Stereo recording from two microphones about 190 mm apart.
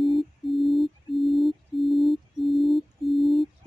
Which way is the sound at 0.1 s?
Centre (ahead or behind).